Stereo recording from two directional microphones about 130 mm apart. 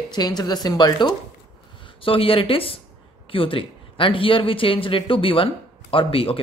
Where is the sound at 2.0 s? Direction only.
45° left (ahead or behind).